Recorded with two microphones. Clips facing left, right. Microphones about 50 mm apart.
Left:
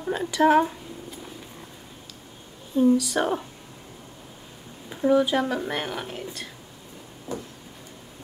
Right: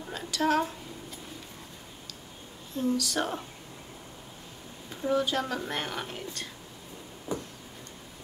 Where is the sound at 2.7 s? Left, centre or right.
Centre.